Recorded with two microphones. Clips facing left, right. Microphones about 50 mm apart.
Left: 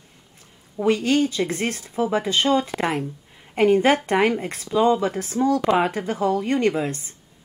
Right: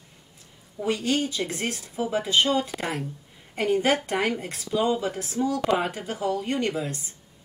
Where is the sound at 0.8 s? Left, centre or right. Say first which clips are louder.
Left 6 dB; left.